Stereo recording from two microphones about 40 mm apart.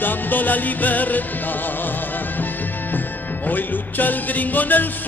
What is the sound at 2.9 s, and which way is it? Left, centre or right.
Music, left.